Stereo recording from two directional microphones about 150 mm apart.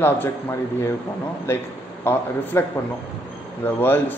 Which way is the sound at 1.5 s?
15° left (ahead or behind).